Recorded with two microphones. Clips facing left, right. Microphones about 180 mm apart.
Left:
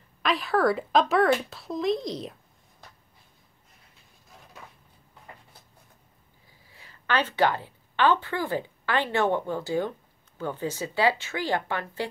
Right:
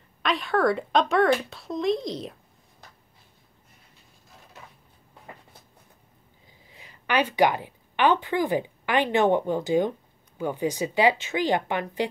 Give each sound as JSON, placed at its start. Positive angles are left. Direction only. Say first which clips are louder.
{"t": 0.2, "sound": "speech", "louder": "even", "side_deg": 0}
{"t": 6.7, "sound": "a woman's voice", "louder": "right 2 dB", "side_deg": -15}